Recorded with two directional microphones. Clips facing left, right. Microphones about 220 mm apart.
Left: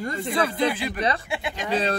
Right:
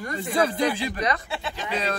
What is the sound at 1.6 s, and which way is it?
Speech, 30° left (ahead or behind).